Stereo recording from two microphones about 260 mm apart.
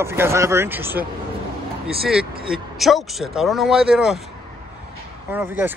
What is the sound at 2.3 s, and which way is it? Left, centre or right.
Speech, right.